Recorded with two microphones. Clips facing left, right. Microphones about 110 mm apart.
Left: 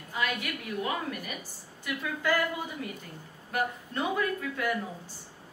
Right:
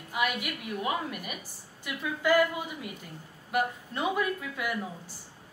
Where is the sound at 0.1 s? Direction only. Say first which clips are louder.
Right 2 dB; 15° right (ahead or behind).